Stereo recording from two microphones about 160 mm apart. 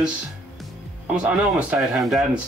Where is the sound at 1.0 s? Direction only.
10° right (ahead or behind).